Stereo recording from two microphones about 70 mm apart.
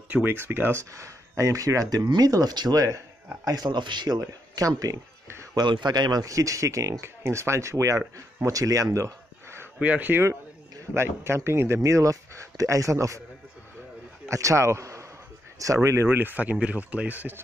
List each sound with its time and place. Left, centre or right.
0.1 s speech: right
0.9 s speech: right
3.5 s speech: right
5.3 s a sound: right
5.6 s speech: right
8.9 s a sound: right
9.8 s speech: right
10.9 s speech: right
14.2 s speech: right